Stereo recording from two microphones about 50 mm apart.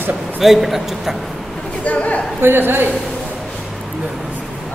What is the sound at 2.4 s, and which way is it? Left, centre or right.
Speech, right.